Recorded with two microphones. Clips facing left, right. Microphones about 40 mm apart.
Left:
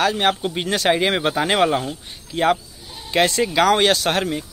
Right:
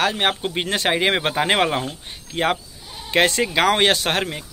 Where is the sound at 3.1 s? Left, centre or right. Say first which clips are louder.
Even; right.